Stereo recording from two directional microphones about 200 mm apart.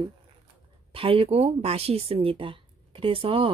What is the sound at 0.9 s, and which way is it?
Speech, 25° right (ahead or behind).